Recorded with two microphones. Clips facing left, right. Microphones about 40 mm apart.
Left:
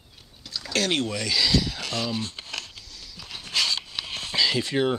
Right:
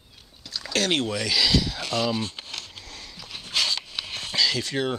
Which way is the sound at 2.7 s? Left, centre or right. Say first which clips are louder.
Right 3 dB; right.